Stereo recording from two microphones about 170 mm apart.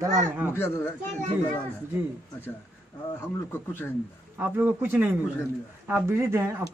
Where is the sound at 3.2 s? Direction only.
15° left (ahead or behind).